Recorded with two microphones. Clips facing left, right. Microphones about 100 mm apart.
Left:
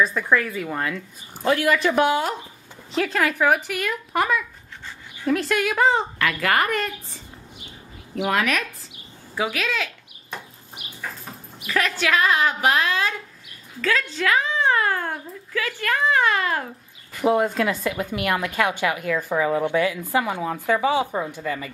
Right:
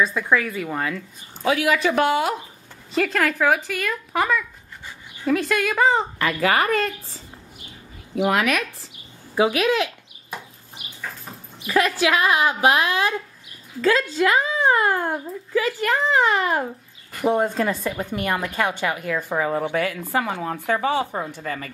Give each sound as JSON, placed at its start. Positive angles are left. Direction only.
{"t": 0.0, "sound": "a woman's voice", "side_deg": 0}
{"t": 8.1, "sound": "a woman's voice", "side_deg": -5}
{"t": 9.3, "sound": "speech", "side_deg": -20}
{"t": 11.6, "sound": "a woman's voice", "side_deg": -20}
{"t": 14.2, "sound": "a child's voice", "side_deg": -15}
{"t": 17.2, "sound": "a woman's voice", "side_deg": 5}
{"t": 18.1, "sound": "speech", "side_deg": -30}
{"t": 18.7, "sound": "a woman's voice", "side_deg": 5}
{"t": 20.1, "sound": "a woman's voice", "side_deg": 5}